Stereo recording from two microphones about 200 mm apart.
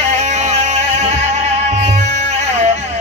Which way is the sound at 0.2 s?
35° right (ahead or behind).